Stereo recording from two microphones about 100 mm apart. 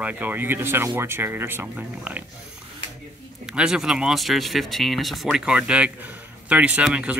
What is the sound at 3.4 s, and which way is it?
Speech, 5° right (ahead or behind).